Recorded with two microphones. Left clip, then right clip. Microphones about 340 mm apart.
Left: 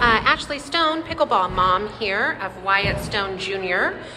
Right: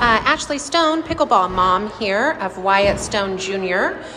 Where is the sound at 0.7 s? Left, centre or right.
Centre.